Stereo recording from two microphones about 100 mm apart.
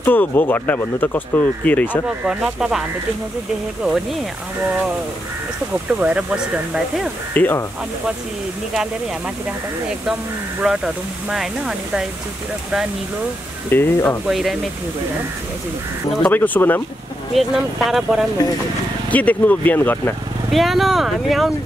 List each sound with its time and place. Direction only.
0.0 s speech: 20° left (ahead or behind)
2.0 s speech: 10° right (ahead or behind)
3.8 s speech: 5° right (ahead or behind)
5.9 s speech: 15° right (ahead or behind)
7.3 s speech: 20° left (ahead or behind)
10.6 s speech: 5° right (ahead or behind)
13.7 s speech: 20° left (ahead or behind)
14.2 s speech: centre (ahead or behind)
16.3 s speech: 20° left (ahead or behind)
17.3 s speech: centre (ahead or behind)
19.0 s speech: 15° left (ahead or behind)
20.5 s speech: centre (ahead or behind)